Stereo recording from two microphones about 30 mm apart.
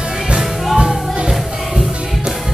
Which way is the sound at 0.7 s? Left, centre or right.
Right.